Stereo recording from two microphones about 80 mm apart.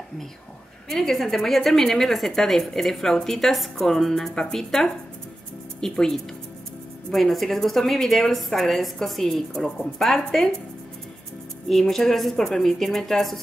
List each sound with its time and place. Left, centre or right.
0.8 s a woman's voice: centre
11.7 s a woman's voice: centre